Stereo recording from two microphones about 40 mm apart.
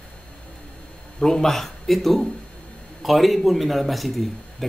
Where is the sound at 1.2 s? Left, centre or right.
Centre.